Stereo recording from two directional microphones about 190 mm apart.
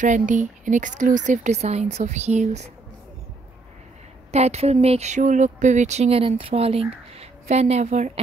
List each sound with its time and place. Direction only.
0.0 s speech: 40° right (ahead or behind)
4.3 s speech: 35° right (ahead or behind)